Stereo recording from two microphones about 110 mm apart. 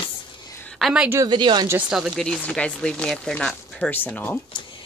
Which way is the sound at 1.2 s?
45° right (ahead or behind).